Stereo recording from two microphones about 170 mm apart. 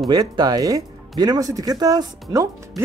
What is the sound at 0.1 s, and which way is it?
Speech, 25° right (ahead or behind).